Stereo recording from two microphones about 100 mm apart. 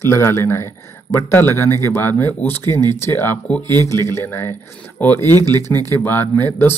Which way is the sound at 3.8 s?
30° left (ahead or behind).